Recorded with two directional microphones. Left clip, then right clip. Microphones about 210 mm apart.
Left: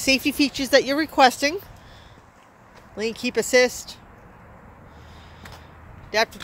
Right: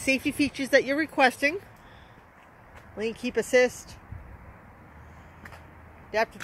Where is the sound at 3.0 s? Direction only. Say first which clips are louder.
Left 4 dB; 5° right (ahead or behind).